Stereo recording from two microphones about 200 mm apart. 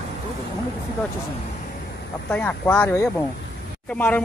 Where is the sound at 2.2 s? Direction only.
5° left (ahead or behind).